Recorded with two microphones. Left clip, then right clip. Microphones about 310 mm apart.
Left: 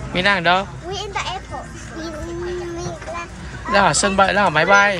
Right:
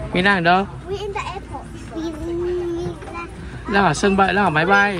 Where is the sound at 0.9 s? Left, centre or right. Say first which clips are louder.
Even; left.